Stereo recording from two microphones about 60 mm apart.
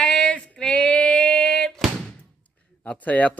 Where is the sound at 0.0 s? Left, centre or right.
Centre.